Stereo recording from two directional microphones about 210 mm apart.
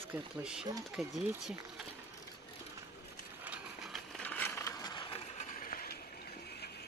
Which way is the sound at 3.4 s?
Centre (ahead or behind).